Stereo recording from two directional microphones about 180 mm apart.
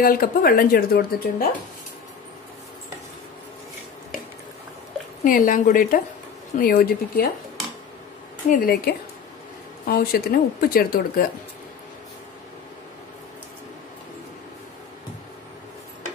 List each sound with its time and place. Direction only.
0.0 s speech: 50° left (ahead or behind)
5.2 s speech: 50° left (ahead or behind)
8.5 s speech: 50° left (ahead or behind)